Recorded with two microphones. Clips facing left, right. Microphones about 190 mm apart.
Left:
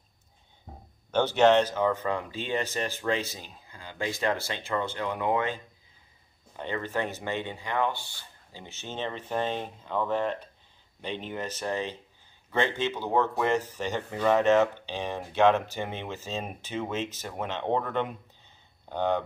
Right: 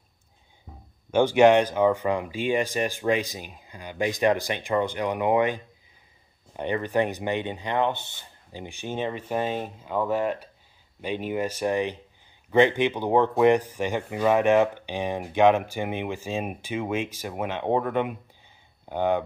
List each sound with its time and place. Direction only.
1.1 s speech: 10° right (ahead or behind)